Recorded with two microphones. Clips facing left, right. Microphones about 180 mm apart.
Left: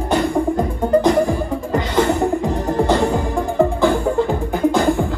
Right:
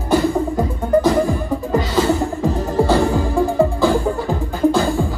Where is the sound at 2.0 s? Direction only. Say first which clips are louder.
Left 4 dB; 15° left (ahead or behind).